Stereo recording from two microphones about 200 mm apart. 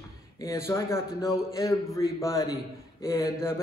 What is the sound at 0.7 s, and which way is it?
A man's voice, 15° left (ahead or behind).